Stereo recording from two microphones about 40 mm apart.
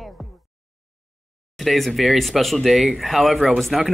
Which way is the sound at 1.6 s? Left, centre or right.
Centre.